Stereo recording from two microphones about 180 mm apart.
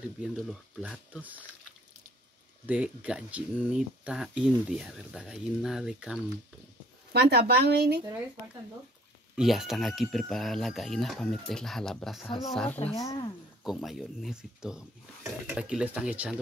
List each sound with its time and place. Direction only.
0.2 s speech: 5° right (ahead or behind)
2.6 s speech: 10° right (ahead or behind)
7.1 s speech: 65° right (ahead or behind)
9.3 s speech: centre (ahead or behind)
12.9 s speech: 20° left (ahead or behind)
13.7 s speech: centre (ahead or behind)